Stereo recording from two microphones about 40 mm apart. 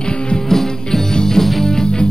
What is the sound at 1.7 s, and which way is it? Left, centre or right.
Music, centre.